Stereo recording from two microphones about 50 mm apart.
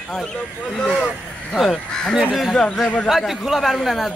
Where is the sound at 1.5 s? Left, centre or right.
Centre.